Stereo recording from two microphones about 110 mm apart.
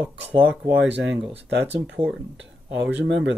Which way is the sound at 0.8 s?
10° right (ahead or behind).